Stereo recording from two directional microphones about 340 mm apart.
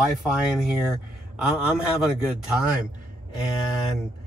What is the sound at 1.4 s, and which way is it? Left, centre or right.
Speech, centre.